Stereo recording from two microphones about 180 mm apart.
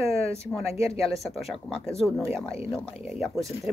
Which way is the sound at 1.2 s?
Centre (ahead or behind).